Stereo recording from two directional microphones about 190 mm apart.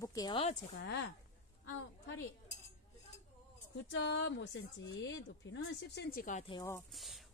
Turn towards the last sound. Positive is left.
turn(degrees=0)  # may be behind; listen again after turning